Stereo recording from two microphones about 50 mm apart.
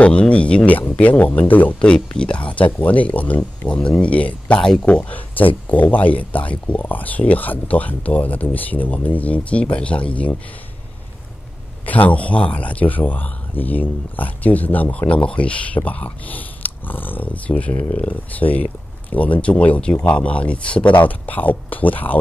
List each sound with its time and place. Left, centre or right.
0.0 s speech: left
2.0 s speech: left
3.6 s speech: left
4.6 s speech: centre
4.8 s speech: left
11.8 s speech: left
17.5 s speech: left
20.9 s speech: left